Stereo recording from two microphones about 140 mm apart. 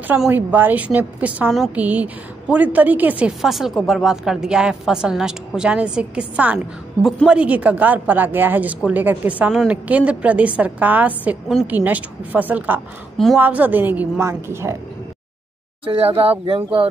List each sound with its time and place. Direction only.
0.3 s a woman's voice: 15° right (ahead or behind)
15.9 s speech: 40° right (ahead or behind)